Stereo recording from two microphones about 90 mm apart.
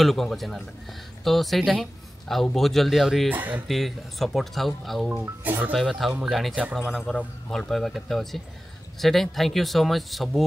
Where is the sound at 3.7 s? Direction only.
Centre (ahead or behind).